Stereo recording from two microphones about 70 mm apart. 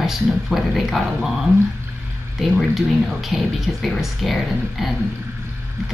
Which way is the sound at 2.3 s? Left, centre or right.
Centre.